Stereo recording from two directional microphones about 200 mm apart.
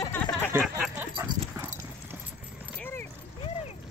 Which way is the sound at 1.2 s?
15° right (ahead or behind).